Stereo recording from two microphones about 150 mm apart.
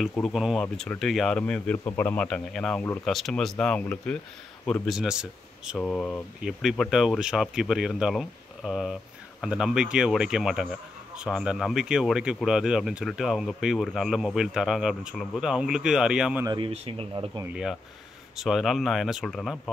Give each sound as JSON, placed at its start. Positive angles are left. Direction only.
{"t": 0.1, "sound": "speech", "side_deg": 0}
{"t": 5.8, "sound": "speech", "side_deg": 5}
{"t": 16.4, "sound": "speech", "side_deg": -30}
{"t": 17.5, "sound": "speech", "side_deg": -5}